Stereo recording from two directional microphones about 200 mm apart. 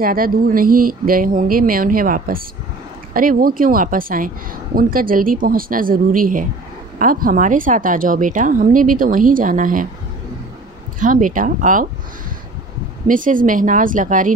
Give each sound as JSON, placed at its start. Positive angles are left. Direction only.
{"t": 0.0, "sound": "a woman's voice", "side_deg": -45}
{"t": 11.0, "sound": "speech", "side_deg": -40}
{"t": 13.0, "sound": "speech", "side_deg": -40}